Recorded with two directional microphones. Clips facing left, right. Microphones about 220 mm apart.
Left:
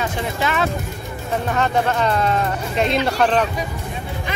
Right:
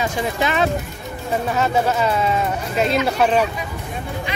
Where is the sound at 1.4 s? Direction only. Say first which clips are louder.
Even; 5° right (ahead or behind).